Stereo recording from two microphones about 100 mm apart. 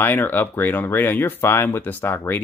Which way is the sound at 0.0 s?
20° left (ahead or behind).